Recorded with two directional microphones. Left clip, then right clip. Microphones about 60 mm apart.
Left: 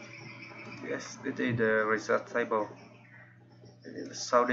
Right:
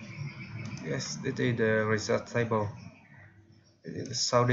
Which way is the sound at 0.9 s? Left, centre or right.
Centre.